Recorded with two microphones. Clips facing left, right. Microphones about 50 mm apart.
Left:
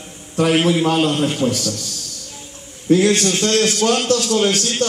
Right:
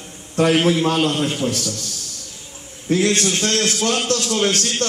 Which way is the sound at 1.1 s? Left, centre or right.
Centre.